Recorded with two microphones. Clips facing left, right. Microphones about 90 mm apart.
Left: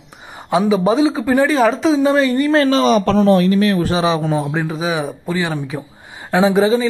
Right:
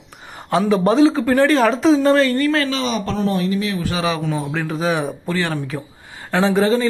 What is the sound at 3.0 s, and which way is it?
Speech, 85° left.